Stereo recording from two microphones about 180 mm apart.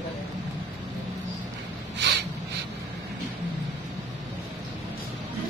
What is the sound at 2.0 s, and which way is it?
Snort, 70° right (ahead or behind).